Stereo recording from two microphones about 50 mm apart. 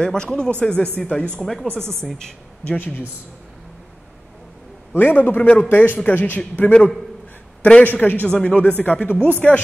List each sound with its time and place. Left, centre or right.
0.0 s speech: centre
1.4 s speech: centre
2.6 s speech: left
4.9 s speech: left
9.4 s speech: left